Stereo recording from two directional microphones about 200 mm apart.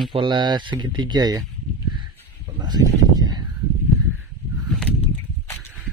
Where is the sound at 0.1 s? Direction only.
25° right (ahead or behind).